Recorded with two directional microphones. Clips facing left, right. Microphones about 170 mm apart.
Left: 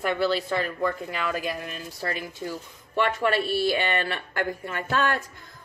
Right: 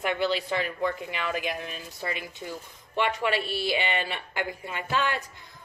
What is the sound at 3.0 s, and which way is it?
A woman's voice, 45° left (ahead or behind).